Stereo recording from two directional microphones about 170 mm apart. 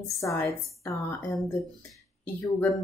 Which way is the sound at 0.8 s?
15° left (ahead or behind).